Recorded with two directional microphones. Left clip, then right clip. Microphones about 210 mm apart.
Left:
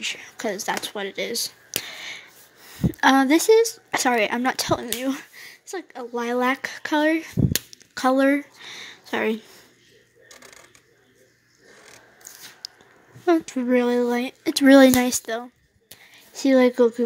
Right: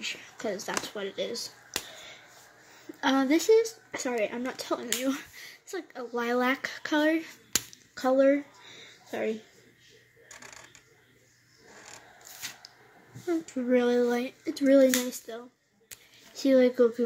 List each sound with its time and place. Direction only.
0.0 s speech: 30° left (ahead or behind)
3.0 s speech: 35° left (ahead or behind)
5.0 s speech: 25° left (ahead or behind); by 9.4 s 50° left (ahead or behind)
13.3 s speech: 35° left (ahead or behind)
16.3 s speech: 30° left (ahead or behind)